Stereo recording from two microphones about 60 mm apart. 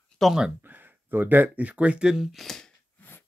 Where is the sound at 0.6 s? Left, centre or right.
Right; by 2.7 s centre.